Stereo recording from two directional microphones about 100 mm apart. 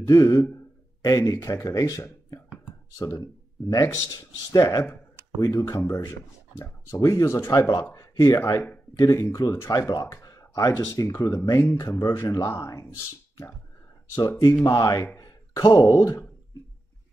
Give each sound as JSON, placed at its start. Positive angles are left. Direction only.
{"t": 0.0, "sound": "speech", "side_deg": 35}
{"t": 3.6, "sound": "speech", "side_deg": 30}